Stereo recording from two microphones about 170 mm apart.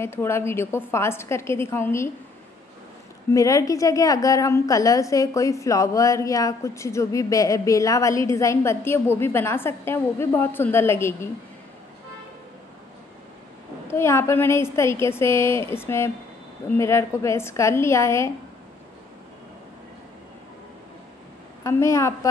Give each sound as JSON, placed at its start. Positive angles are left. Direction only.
{"t": 0.0, "sound": "a woman's voice", "side_deg": 15}
{"t": 3.3, "sound": "a woman's voice", "side_deg": 20}
{"t": 13.9, "sound": "a woman's voice", "side_deg": 15}
{"t": 21.6, "sound": "a woman's voice", "side_deg": 15}